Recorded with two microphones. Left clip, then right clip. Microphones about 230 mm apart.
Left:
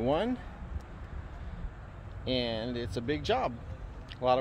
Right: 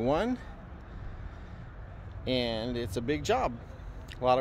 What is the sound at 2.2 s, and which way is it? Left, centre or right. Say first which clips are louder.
Speech: right 1 dB; centre.